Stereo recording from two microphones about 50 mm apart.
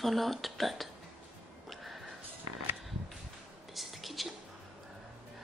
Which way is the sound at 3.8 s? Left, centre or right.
Centre.